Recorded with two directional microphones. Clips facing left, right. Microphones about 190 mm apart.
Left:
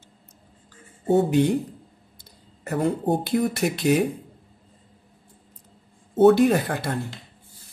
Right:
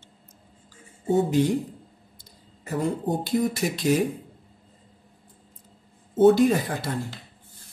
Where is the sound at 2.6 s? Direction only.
60° left (ahead or behind).